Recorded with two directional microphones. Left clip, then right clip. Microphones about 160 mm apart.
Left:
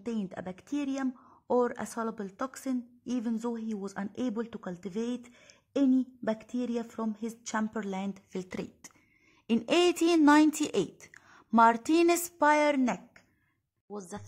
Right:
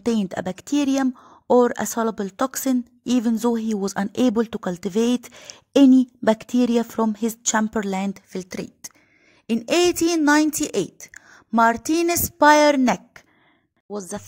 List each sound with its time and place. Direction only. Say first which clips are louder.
0.0 s a woman's voice: right 13 dB; 50° right (ahead or behind)
8.3 s a woman's voice: right 7 dB; 25° right (ahead or behind)
12.4 s a woman's voice: right 13 dB; 40° right (ahead or behind)